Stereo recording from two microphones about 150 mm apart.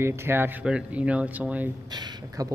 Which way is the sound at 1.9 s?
25° right (ahead or behind).